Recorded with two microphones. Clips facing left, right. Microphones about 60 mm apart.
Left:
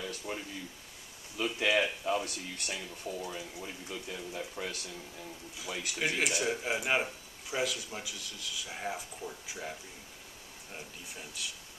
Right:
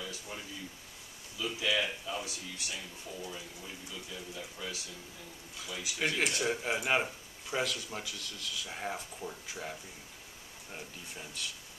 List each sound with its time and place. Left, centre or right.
0.0 s a sound: left
1.3 s speech: left
5.9 s speech: centre